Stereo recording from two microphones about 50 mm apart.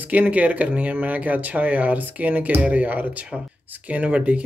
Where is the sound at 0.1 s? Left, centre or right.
Right.